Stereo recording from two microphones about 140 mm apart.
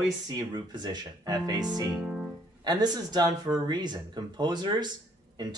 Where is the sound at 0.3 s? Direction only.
30° right (ahead or behind).